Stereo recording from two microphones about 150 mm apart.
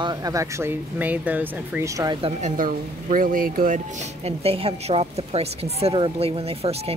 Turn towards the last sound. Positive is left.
turn(degrees=-40)  # may be behind; listen again after turning